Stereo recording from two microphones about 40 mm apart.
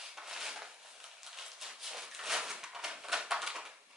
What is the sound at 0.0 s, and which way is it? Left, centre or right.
Rub, centre.